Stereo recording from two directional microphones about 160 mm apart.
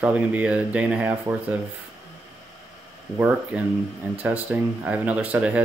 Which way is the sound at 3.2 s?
10° right (ahead or behind).